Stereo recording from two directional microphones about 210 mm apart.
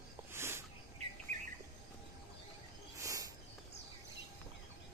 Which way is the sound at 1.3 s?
35° right (ahead or behind).